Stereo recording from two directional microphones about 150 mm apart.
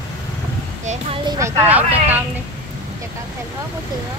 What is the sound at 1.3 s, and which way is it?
Speech, 20° right (ahead or behind).